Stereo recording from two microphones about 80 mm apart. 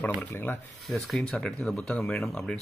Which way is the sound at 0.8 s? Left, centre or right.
Centre.